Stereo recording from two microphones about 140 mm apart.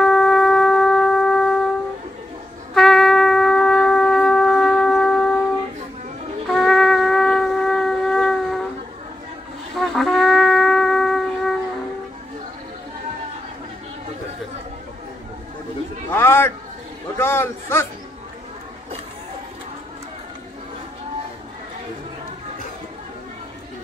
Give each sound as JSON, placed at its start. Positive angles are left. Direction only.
{"t": 0.0, "sound": "shofar", "side_deg": 5}
{"t": 2.7, "sound": "shofar", "side_deg": 0}
{"t": 6.4, "sound": "shofar", "side_deg": 0}
{"t": 9.8, "sound": "shofar", "side_deg": 0}
{"t": 16.1, "sound": "a sound", "side_deg": 15}